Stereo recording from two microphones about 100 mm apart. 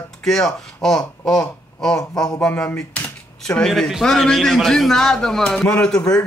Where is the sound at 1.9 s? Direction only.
40° left (ahead or behind).